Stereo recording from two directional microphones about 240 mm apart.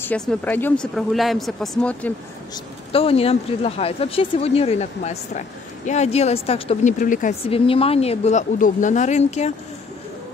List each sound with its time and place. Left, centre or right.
0.0 s speech: centre
2.5 s a woman's voice: left